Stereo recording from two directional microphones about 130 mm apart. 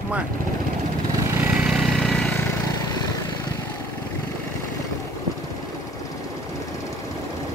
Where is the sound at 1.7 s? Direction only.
Centre (ahead or behind).